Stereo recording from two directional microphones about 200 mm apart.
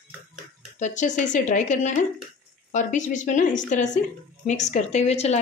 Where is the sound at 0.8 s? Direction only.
40° left (ahead or behind).